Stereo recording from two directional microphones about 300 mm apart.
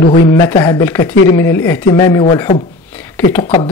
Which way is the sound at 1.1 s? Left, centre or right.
Left.